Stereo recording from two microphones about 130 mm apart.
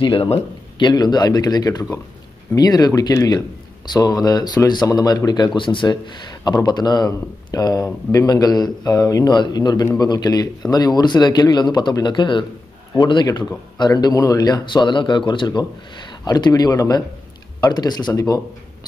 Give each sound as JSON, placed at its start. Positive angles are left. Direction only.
{"t": 0.0, "sound": "speech", "side_deg": 45}